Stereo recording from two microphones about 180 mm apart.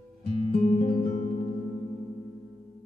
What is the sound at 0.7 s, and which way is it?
Music, 40° left (ahead or behind).